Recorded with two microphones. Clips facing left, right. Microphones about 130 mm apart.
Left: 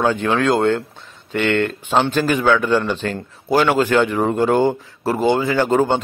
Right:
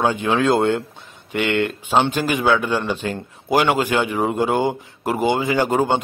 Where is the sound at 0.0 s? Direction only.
10° right (ahead or behind).